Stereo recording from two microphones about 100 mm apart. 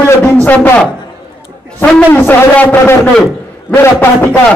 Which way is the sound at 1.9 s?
20° left (ahead or behind).